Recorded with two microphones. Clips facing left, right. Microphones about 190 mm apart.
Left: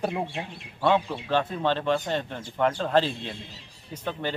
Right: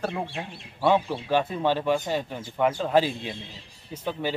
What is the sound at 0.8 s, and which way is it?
Speech, 10° right (ahead or behind).